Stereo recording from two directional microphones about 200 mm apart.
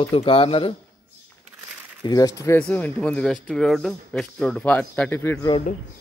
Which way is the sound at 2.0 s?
20° left (ahead or behind).